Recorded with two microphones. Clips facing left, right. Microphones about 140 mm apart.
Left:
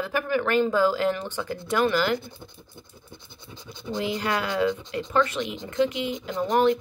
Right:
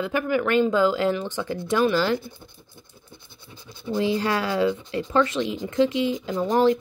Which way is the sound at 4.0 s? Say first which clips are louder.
Right 4 dB; 30° right (ahead or behind).